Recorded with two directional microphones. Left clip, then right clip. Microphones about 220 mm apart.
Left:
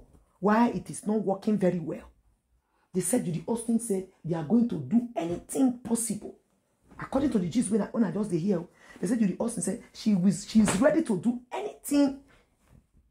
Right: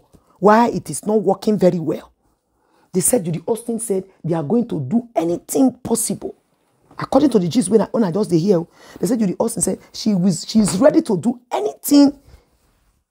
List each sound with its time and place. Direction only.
0.4 s speech: 40° right (ahead or behind)